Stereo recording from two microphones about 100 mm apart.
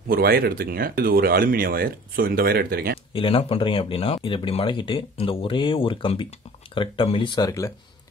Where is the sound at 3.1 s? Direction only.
65° left (ahead or behind).